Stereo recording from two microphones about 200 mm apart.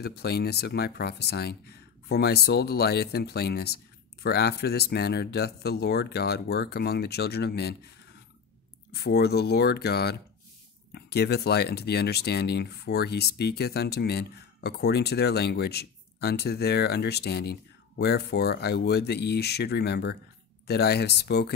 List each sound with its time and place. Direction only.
0.0 s speech: 55° left (ahead or behind)
8.9 s speech: 55° left (ahead or behind)